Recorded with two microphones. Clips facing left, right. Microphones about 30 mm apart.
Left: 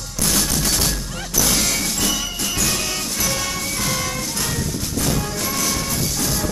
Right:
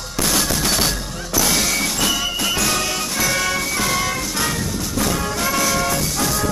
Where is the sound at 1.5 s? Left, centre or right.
Centre.